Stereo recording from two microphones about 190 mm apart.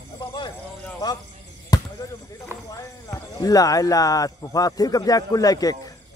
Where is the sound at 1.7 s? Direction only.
20° left (ahead or behind).